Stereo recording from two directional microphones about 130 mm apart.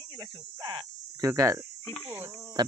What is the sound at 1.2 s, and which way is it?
Speech, 25° right (ahead or behind).